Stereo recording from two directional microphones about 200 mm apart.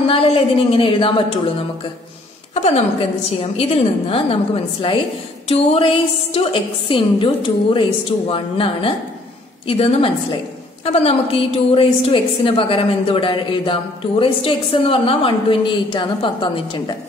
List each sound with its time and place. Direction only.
0.0 s a woman's voice: 30° left (ahead or behind)
2.5 s a woman's voice: 30° left (ahead or behind)
5.5 s a woman's voice: 30° left (ahead or behind)